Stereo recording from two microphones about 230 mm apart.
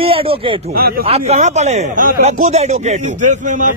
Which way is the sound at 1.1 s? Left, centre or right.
Right.